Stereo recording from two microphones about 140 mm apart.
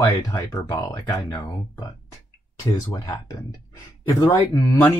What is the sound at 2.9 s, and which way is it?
Speech, 25° left (ahead or behind).